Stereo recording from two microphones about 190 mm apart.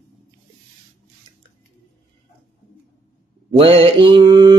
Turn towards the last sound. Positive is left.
turn(degrees=-25)  # may be behind; listen again after turning